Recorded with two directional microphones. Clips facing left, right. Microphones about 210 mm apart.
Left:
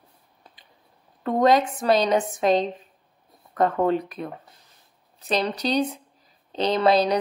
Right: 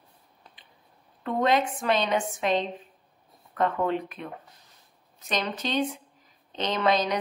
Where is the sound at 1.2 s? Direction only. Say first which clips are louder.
Left 5 dB; 40° left (ahead or behind).